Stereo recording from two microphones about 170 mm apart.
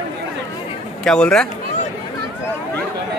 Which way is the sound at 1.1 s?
5° left (ahead or behind).